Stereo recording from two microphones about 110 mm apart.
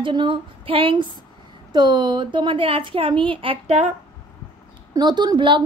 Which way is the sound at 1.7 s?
40° right (ahead or behind).